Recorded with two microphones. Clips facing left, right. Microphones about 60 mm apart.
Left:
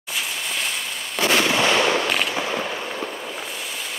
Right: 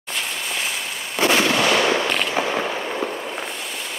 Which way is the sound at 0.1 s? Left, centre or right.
Centre.